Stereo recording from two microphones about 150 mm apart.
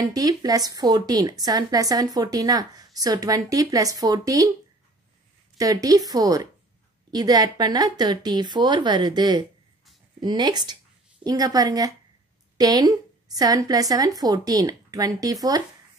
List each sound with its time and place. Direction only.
0.0 s a woman's voice: 25° right (ahead or behind)
5.6 s a woman's voice: 25° right (ahead or behind)